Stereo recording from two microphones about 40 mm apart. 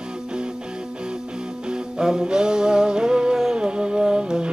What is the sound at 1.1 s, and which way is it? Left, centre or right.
Music, centre.